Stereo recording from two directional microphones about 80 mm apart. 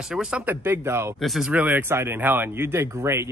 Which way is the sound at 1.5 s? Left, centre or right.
Right.